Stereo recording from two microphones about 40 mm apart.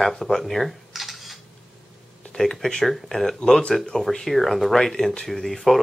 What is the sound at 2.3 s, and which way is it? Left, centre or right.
Speech, centre.